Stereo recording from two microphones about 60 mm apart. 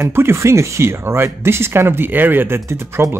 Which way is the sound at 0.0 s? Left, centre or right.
Right.